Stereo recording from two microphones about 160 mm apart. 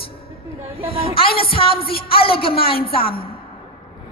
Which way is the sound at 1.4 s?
35° left (ahead or behind).